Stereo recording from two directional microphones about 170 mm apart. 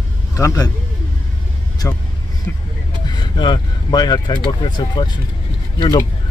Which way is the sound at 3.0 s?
25° left (ahead or behind).